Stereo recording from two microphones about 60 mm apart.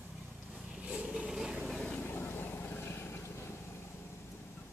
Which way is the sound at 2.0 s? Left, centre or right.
Left.